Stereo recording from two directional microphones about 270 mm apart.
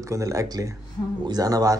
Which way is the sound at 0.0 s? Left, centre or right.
Centre.